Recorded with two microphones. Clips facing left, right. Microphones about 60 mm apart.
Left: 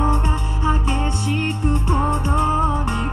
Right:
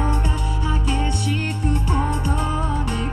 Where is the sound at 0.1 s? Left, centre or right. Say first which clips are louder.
Left 2 dB; left.